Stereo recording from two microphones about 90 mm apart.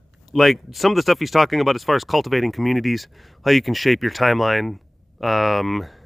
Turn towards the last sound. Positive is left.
turn(degrees=0)  # may be behind; listen again after turning